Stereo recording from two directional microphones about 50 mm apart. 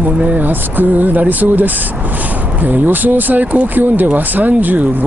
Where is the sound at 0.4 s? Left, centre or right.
Right.